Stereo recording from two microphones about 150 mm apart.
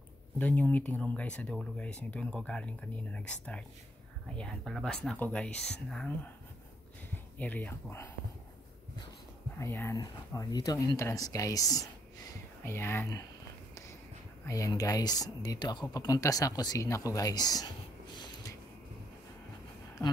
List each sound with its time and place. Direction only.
0.4 s speech: 10° left (ahead or behind)
7.3 s speech: 10° left (ahead or behind)
9.6 s speech: 15° left (ahead or behind)
14.4 s speech: 20° left (ahead or behind)